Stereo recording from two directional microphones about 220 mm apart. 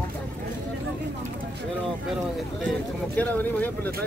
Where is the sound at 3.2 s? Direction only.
5° left (ahead or behind).